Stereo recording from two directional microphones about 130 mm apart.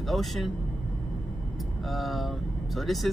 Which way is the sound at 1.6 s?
Centre (ahead or behind).